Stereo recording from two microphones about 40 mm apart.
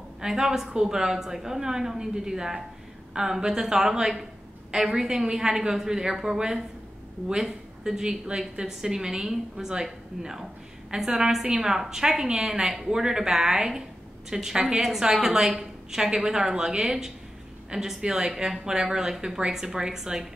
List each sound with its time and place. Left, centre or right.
0.2 s a woman's voice: centre